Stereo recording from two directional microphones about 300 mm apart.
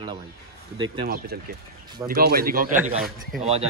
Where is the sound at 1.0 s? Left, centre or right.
Right.